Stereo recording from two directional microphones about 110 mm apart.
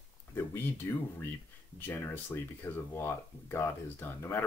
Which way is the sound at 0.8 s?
20° left (ahead or behind).